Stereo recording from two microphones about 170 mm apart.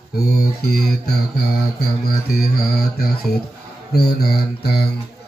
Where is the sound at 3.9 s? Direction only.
65° left (ahead or behind).